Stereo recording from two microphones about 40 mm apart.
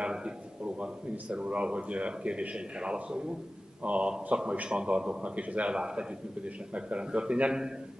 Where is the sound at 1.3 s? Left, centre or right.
Right.